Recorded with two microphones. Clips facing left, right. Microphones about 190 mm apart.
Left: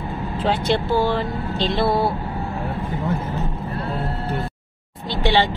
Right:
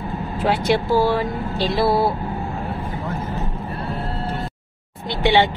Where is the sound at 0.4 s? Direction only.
10° right (ahead or behind).